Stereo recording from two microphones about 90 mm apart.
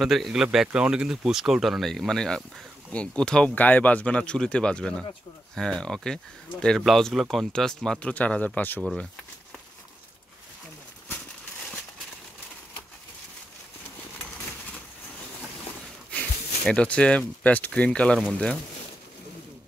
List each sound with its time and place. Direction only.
0.0 s speech: centre (ahead or behind)
8.1 s speech: 15° left (ahead or behind)
16.1 s speech: 15° left (ahead or behind)